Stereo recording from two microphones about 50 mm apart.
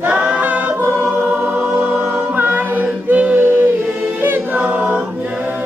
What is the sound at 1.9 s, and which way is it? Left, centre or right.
Music, right.